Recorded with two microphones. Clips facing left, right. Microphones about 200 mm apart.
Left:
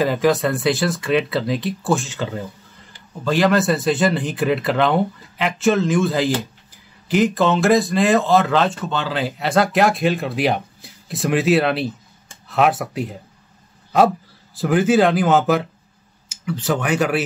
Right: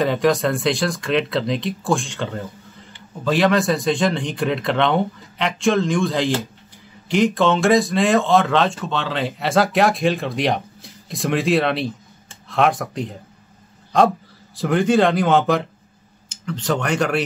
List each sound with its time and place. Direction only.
0.0 s speech: 5° left (ahead or behind)